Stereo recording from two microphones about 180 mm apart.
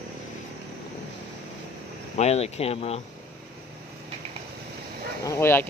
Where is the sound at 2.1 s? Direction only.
35° left (ahead or behind).